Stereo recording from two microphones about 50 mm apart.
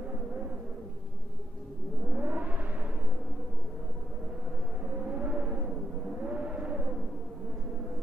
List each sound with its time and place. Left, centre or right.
0.1 s a sound: right
2.0 s music: right
4.9 s vehicle: centre